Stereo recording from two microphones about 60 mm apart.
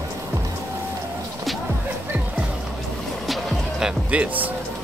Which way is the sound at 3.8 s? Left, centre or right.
Right.